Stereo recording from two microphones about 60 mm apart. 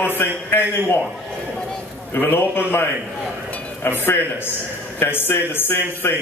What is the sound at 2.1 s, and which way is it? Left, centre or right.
A man's voice, left.